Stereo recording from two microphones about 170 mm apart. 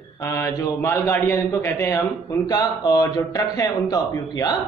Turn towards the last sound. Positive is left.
turn(degrees=25)  # may be behind; listen again after turning